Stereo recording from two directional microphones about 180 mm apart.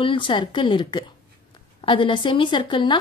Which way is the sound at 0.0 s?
30° left (ahead or behind).